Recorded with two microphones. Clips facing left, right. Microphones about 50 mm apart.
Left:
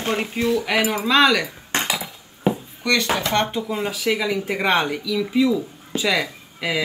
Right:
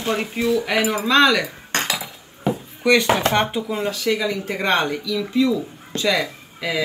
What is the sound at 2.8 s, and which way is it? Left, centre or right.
Speech, centre.